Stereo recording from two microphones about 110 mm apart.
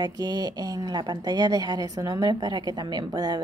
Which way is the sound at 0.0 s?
35° right (ahead or behind).